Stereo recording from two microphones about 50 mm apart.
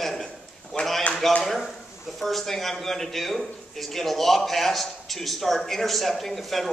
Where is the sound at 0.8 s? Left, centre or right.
Left.